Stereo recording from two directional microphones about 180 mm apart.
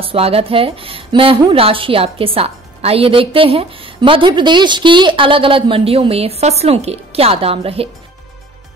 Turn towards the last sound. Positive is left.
turn(degrees=-30)  # may be behind; listen again after turning